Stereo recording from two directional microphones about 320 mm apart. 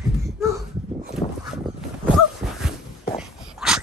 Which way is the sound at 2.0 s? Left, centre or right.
Centre.